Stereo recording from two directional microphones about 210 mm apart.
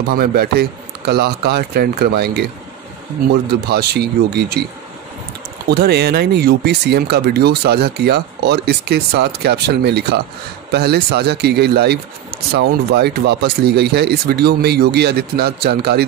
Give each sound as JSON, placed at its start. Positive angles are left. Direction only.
{"t": 0.1, "sound": "speech", "side_deg": -45}
{"t": 3.6, "sound": "speech", "side_deg": -50}
{"t": 5.7, "sound": "speech", "side_deg": -50}